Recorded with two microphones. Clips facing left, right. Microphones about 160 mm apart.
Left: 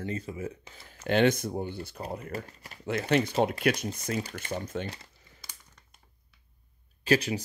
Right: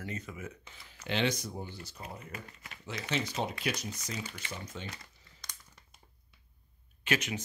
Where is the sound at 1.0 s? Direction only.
50° left (ahead or behind).